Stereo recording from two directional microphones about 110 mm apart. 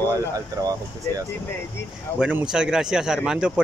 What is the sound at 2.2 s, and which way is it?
A man's voice, 10° right (ahead or behind).